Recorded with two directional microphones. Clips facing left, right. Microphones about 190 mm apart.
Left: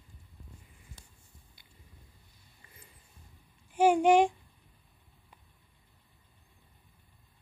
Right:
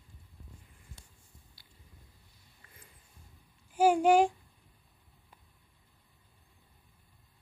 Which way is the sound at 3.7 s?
40° right (ahead or behind).